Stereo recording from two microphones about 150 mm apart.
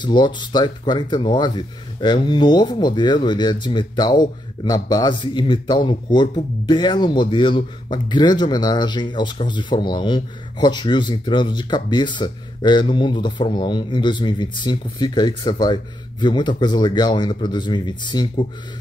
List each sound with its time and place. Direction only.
0.0 s speech: 30° left (ahead or behind)